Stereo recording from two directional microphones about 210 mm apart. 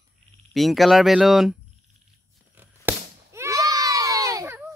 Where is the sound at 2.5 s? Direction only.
10° right (ahead or behind).